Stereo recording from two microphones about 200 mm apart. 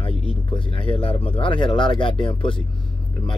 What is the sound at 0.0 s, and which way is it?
Speech, 25° left (ahead or behind).